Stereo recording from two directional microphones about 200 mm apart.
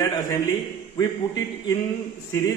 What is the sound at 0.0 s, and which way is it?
A man's voice, 20° left (ahead or behind).